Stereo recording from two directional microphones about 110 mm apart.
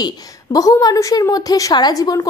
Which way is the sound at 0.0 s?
35° left (ahead or behind).